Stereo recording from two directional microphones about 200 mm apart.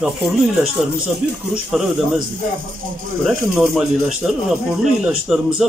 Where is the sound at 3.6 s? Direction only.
10° right (ahead or behind).